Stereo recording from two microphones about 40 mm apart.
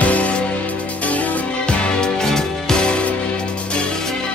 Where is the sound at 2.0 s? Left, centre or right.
Centre.